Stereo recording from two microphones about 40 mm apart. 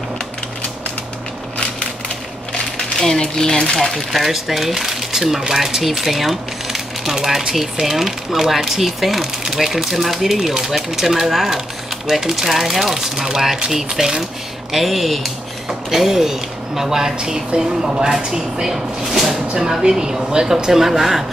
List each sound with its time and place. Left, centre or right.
3.0 s speech: centre
4.1 s speech: centre
14.7 s speech: centre
15.9 s speech: centre